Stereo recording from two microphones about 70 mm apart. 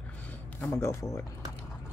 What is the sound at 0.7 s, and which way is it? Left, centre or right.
Speech, left.